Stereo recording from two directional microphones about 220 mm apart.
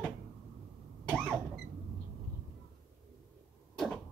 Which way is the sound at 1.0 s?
Centre (ahead or behind).